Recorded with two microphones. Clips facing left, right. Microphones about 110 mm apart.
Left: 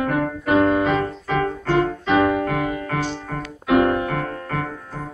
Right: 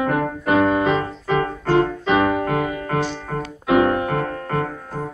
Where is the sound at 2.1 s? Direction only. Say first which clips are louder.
Even; centre (ahead or behind).